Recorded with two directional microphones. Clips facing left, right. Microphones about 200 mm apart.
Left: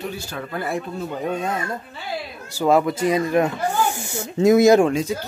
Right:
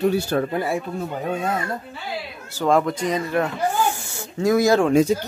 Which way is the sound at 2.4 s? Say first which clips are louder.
Left 1 dB; 10° left (ahead or behind).